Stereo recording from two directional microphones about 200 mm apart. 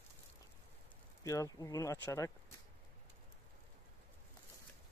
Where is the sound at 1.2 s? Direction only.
15° left (ahead or behind).